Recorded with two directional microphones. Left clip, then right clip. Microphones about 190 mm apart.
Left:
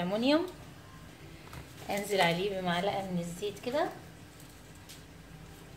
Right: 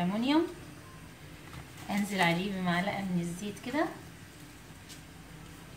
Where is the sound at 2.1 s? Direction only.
45° left (ahead or behind).